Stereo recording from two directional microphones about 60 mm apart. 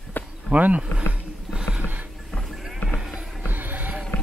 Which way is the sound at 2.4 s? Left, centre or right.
Centre.